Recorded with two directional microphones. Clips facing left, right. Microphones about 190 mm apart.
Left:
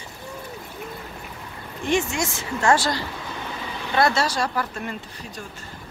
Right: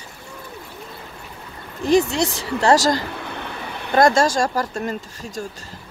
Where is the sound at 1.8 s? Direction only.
35° right (ahead or behind).